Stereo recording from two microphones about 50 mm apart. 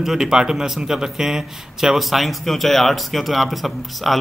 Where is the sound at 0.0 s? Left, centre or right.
Centre.